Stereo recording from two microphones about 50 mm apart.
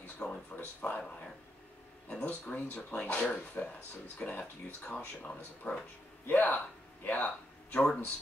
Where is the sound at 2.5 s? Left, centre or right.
Left.